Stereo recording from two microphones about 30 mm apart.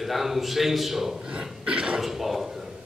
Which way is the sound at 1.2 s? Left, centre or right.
Right.